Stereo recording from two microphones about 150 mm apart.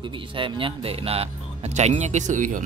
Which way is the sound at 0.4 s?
35° right (ahead or behind).